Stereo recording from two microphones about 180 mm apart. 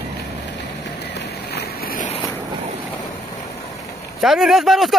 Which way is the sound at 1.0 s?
70° left (ahead or behind).